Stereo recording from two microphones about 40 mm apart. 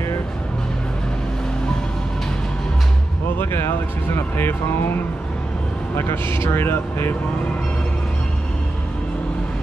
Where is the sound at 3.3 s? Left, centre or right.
Left.